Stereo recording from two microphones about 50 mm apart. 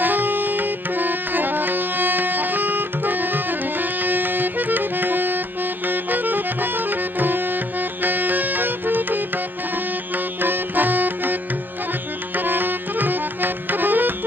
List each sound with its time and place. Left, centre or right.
0.0 s music: right
5.9 s tabla: right
10.1 s music: right
12.4 s tabla: right